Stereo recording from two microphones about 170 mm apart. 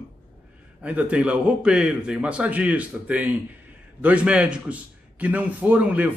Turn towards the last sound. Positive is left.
turn(degrees=-10)  # may be behind; listen again after turning